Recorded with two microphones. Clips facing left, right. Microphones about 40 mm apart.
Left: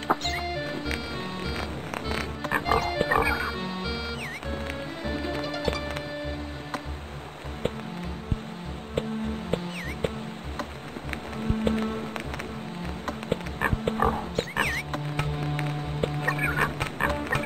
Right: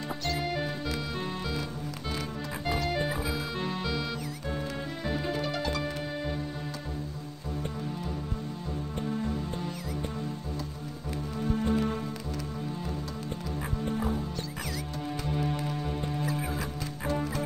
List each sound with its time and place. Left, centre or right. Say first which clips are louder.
0.1 s music: left 8 dB; left
2.0 s music: left 4 dB; left
3.5 s music: even; centre
5.0 s music: left 1 dB; centre
11.4 s music: left 1 dB; left
13.3 s music: left 10 dB; left